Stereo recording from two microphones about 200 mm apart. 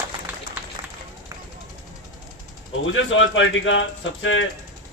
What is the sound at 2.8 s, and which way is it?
Speech, 75° left (ahead or behind).